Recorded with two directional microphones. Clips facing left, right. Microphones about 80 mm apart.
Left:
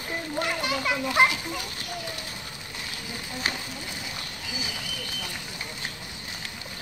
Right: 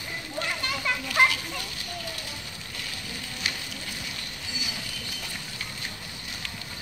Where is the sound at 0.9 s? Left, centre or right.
Left.